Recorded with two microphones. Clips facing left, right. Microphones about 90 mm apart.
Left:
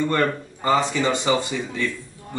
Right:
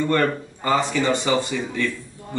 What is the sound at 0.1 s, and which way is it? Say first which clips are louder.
Speech: right 1 dB; 15° left (ahead or behind).